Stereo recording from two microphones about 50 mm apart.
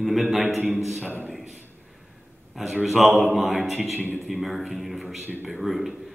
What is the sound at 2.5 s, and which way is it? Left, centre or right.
Speech, centre.